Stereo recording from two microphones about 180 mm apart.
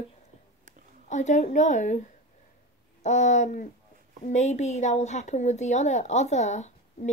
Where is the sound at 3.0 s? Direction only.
40° left (ahead or behind).